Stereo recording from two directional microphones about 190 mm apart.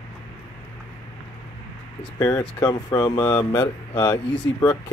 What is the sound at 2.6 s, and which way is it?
Speech, 20° left (ahead or behind).